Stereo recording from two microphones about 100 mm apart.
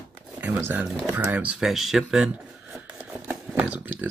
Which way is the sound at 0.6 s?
20° right (ahead or behind).